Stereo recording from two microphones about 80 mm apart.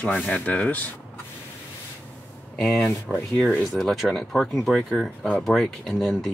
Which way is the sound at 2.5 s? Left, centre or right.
Centre.